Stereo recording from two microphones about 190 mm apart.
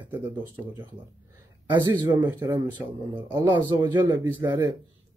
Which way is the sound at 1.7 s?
20° right (ahead or behind).